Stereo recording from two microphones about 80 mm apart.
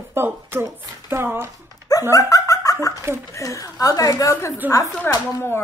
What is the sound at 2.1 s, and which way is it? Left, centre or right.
Dog, left.